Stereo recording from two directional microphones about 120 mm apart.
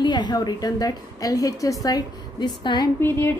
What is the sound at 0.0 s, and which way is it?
A woman's voice, 35° left (ahead or behind).